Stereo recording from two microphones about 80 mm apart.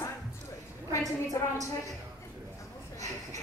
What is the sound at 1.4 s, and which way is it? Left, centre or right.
Speech, left.